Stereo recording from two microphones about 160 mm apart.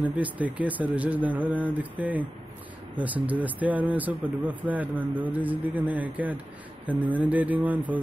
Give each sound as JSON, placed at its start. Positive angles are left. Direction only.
{"t": 0.2, "sound": "speech", "side_deg": -10}
{"t": 6.9, "sound": "speech", "side_deg": -30}
{"t": 7.2, "sound": "speech", "side_deg": -10}